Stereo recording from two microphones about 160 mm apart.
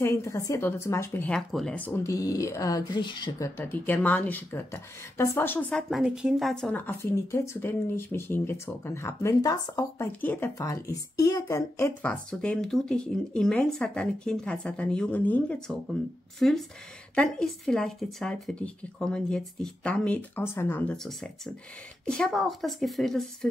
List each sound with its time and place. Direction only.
0.0 s speech: 20° left (ahead or behind)
3.4 s speech: 10° left (ahead or behind)
10.2 s speech: 10° left (ahead or behind)
10.6 s speech: 20° left (ahead or behind)
12.0 s speech: 5° left (ahead or behind)